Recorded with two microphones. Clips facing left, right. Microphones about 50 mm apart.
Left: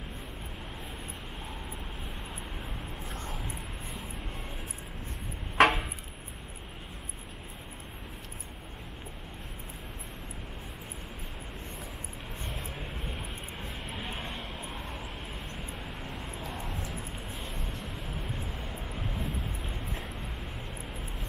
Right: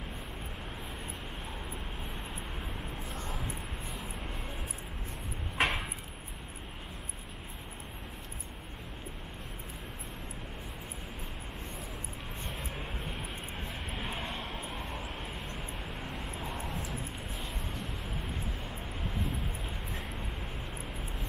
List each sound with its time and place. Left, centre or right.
5.6 s a sound: left
12.4 s vehicle: centre
13.9 s music: centre
14.3 s a sound: centre
16.0 s vehicle: centre
18.0 s vehicle: centre